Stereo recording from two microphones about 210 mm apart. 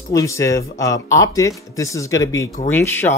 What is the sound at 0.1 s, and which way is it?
Speech, 15° left (ahead or behind).